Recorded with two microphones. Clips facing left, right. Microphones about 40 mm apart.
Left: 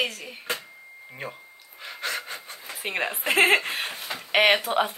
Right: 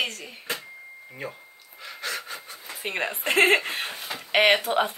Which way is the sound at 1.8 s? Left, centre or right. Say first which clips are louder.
Left 2 dB; left.